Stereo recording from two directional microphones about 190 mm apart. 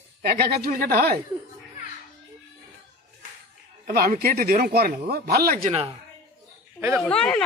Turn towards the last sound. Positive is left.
turn(degrees=5)  # may be behind; listen again after turning